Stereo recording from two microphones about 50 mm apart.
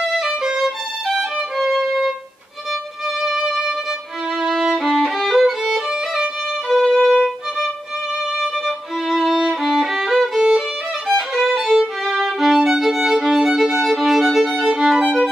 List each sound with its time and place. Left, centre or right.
0.0 s violin: centre
3.2 s music: centre
4.4 s violin: centre